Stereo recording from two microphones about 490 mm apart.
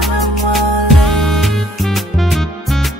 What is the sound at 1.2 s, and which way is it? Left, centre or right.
Music, centre.